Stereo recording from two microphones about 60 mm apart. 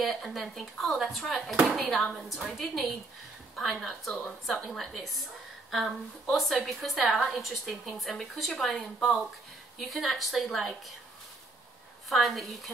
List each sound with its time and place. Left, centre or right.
0.0 s a woman's voice: centre
4.6 s a woman's voice: centre
12.1 s a woman's voice: centre